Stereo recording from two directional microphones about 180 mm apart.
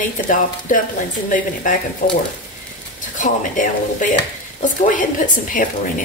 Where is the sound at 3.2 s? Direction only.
45° left (ahead or behind).